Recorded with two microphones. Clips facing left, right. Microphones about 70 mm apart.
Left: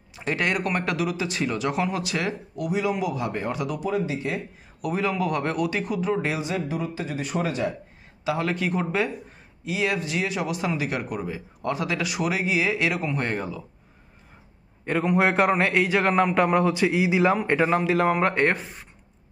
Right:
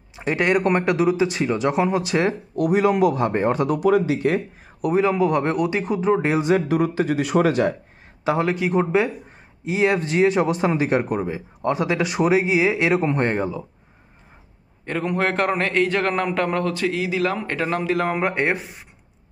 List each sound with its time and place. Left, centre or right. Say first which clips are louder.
0.1 s speech: right 6 dB; centre
2.5 s speech: right 8 dB; right
3.8 s speech: right 9 dB; right
4.8 s speech: right 7 dB; right
6.4 s speech: right 9 dB; right
8.4 s speech: right 6 dB; centre
9.7 s speech: right 6 dB; right
14.9 s a man's voice: left 1 dB; centre